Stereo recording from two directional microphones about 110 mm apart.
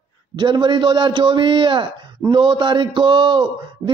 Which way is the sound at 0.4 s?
45° right (ahead or behind).